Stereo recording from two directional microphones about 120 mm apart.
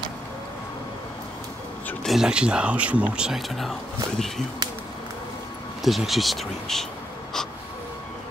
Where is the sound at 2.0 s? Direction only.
5° right (ahead or behind).